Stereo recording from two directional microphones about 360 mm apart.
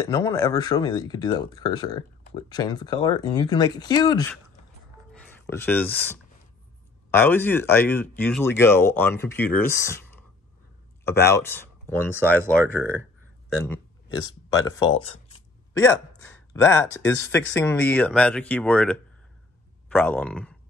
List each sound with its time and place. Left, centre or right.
0.0 s a man's voice: centre
16.6 s speech: centre